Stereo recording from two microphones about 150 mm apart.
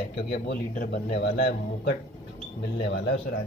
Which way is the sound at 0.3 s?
90° left.